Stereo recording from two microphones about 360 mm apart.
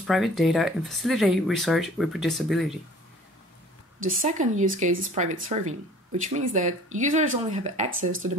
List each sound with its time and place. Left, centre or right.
0.0 s speech: centre
4.0 s speech: right
8.1 s speech: right